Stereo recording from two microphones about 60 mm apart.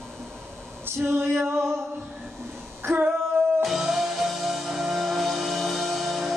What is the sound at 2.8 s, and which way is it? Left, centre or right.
Female singing, right.